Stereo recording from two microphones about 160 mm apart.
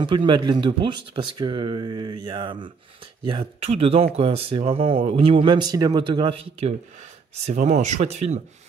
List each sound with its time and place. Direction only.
0.0 s speech: 30° right (ahead or behind)
7.5 s speech: 50° right (ahead or behind)